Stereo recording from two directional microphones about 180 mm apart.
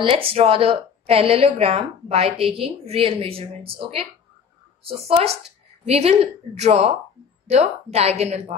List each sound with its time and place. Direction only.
0.0 s a woman's voice: 30° right (ahead or behind)